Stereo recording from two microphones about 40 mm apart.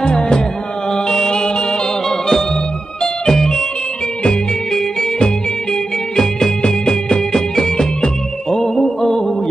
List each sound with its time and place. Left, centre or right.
0.0 s music: left
2.0 s music: centre